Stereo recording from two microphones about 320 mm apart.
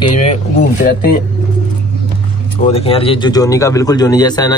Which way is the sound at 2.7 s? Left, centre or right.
Centre.